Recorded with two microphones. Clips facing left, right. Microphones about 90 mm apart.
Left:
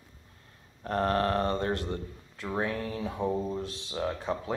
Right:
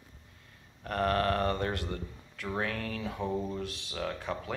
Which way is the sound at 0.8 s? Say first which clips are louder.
Left 2 dB; 25° left (ahead or behind).